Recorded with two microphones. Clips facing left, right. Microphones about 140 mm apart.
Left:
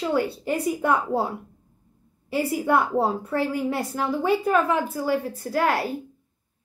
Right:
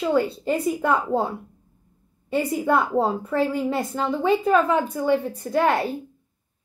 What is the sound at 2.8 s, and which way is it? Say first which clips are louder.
Speech: right 1 dB; 20° right (ahead or behind).